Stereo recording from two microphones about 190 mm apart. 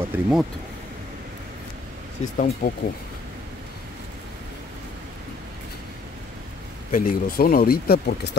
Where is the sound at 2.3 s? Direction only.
45° left (ahead or behind).